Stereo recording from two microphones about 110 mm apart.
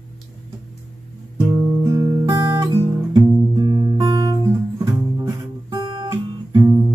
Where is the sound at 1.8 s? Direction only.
30° right (ahead or behind).